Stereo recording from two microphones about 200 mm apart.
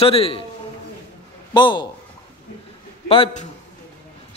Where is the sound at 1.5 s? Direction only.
25° left (ahead or behind).